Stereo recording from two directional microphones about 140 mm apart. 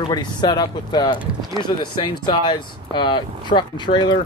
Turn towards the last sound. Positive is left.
turn(degrees=35)  # may be behind; listen again after turning